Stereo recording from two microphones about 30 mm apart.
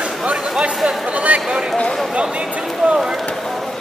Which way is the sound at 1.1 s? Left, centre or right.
Right.